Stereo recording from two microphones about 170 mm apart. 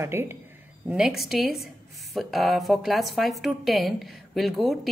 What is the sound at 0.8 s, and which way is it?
Speech, 5° right (ahead or behind).